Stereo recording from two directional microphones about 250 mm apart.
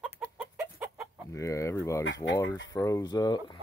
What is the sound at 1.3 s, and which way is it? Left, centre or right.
Speech, centre.